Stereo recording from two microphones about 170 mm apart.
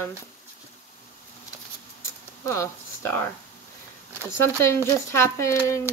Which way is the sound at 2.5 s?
15° left (ahead or behind).